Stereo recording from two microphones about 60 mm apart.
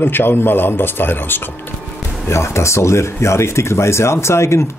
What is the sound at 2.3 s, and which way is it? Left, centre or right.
Speech, left.